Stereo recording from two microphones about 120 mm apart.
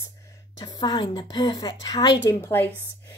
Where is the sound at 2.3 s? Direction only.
15° left (ahead or behind).